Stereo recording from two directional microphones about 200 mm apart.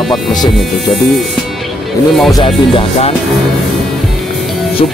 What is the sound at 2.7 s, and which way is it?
Music, 30° left (ahead or behind).